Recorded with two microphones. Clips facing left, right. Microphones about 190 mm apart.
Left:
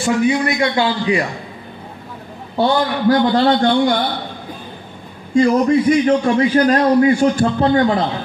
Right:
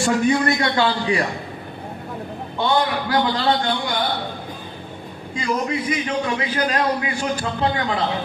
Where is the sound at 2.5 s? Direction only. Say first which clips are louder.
Left 4 dB; 40° left (ahead or behind).